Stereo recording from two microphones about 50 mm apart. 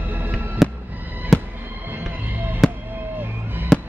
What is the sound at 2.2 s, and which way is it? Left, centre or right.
Fireworks, right.